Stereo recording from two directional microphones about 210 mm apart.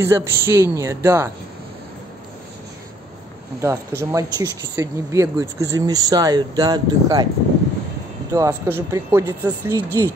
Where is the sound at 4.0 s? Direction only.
15° right (ahead or behind).